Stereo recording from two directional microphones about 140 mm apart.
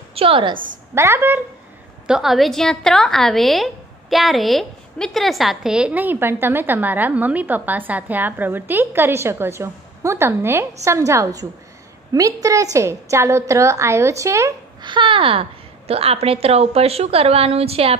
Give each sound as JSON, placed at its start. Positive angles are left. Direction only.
{"t": 0.1, "sound": "a woman's voice", "side_deg": -40}
{"t": 0.9, "sound": "a woman's voice", "side_deg": -20}
{"t": 2.0, "sound": "a woman's voice", "side_deg": -5}